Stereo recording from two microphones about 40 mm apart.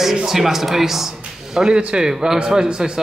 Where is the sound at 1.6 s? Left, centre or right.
Centre.